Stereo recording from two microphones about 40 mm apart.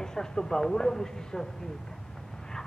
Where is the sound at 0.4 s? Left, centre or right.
Centre.